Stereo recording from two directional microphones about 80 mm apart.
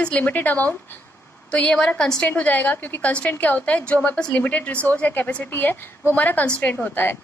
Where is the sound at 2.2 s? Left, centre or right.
Centre.